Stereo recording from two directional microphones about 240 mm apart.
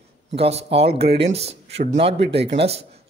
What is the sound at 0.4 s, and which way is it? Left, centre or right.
Speech, right.